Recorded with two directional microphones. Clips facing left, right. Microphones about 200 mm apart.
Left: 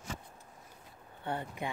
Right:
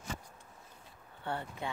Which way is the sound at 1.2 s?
15° left (ahead or behind).